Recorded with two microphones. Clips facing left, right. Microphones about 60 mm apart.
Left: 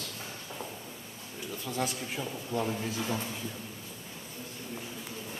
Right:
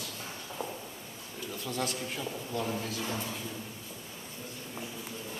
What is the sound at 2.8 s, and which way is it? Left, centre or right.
Speech, centre.